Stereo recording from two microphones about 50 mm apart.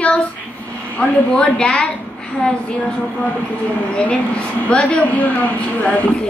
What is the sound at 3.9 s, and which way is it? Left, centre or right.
A woman's voice, left.